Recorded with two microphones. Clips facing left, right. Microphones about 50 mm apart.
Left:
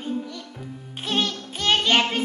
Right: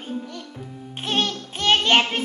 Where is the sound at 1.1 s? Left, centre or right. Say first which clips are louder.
Right 1 dB; right.